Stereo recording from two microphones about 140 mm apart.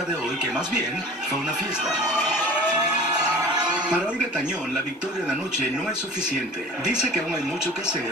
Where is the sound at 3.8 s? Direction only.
5° right (ahead or behind).